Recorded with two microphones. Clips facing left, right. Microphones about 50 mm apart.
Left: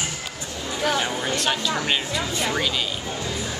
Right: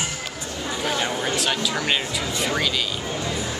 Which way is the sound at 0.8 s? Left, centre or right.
Centre.